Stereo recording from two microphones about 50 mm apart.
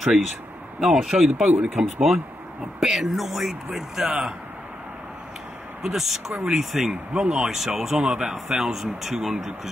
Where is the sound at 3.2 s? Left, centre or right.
Centre.